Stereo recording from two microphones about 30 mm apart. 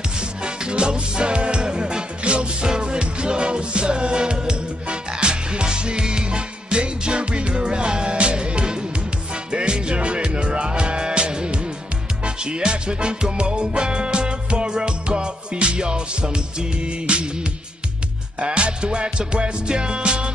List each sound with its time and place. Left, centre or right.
0.2 s music: right
2.2 s music: right